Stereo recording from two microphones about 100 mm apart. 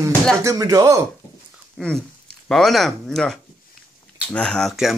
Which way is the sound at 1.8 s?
5° left (ahead or behind).